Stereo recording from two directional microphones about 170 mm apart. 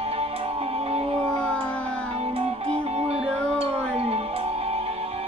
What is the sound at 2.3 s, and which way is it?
Music, 35° right (ahead or behind).